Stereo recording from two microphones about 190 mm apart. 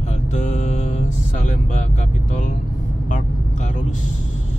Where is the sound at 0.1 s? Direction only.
40° left (ahead or behind).